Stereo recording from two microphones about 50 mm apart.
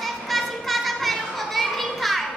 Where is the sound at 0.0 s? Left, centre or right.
Centre.